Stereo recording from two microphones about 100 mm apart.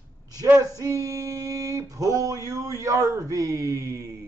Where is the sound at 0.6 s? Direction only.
35° right (ahead or behind).